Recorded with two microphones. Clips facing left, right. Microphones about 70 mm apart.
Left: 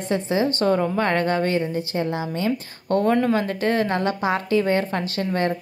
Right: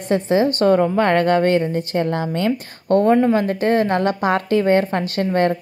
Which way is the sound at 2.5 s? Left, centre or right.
Right.